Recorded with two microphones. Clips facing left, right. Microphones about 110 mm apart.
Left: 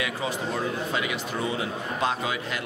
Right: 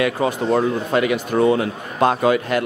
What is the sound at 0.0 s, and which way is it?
A man's voice, 60° right (ahead or behind).